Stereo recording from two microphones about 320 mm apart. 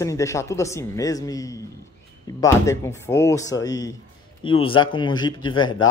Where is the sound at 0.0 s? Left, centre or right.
Centre.